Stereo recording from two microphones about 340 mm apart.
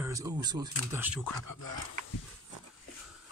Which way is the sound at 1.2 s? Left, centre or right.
Left.